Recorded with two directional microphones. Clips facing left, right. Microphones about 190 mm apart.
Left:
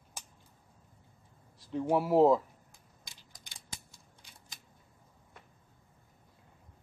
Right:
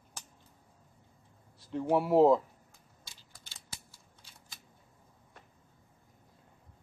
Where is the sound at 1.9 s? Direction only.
Centre (ahead or behind).